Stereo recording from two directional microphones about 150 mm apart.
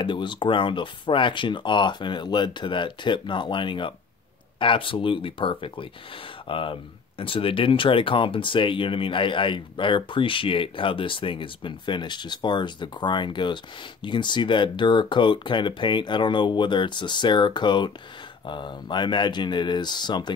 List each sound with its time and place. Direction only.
0.0 s speech: 30° left (ahead or behind)